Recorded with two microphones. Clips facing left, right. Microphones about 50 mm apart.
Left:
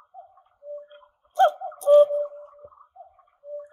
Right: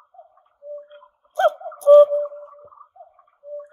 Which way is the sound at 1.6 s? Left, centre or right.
Centre.